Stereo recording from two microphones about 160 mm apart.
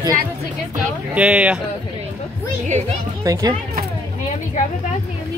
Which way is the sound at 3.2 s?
20° right (ahead or behind).